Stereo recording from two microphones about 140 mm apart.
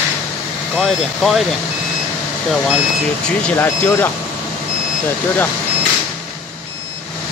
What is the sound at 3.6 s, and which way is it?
Speech, 15° left (ahead or behind).